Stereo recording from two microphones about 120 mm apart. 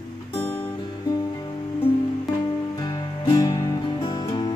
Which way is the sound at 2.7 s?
35° left (ahead or behind).